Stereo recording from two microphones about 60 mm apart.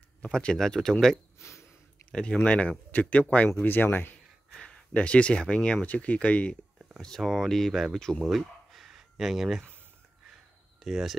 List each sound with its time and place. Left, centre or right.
0.2 s speech: centre
1.4 s a sound: left
2.0 s speech: centre
3.6 s speech: left
4.9 s speech: centre
7.0 s speech: centre
8.2 s a sound: centre
10.8 s speech: centre